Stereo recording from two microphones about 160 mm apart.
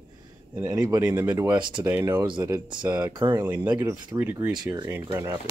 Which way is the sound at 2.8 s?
10° right (ahead or behind).